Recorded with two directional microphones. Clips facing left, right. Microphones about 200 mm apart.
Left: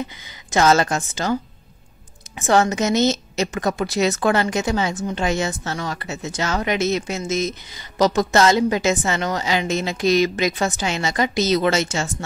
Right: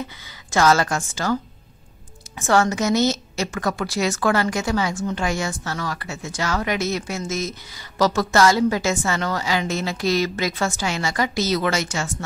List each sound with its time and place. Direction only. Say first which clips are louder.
0.5 s a woman's voice: left 1 dB; 20° left (ahead or behind)